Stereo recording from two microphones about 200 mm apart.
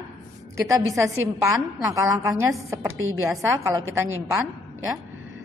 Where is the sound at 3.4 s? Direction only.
15° right (ahead or behind).